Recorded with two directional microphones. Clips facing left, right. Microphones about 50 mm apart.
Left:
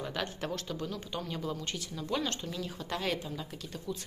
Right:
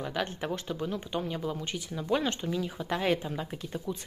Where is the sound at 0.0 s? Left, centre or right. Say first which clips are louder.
Right 3 dB; centre.